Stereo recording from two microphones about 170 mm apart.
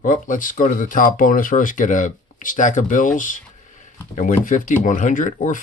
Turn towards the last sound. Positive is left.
turn(degrees=50)  # may be behind; listen again after turning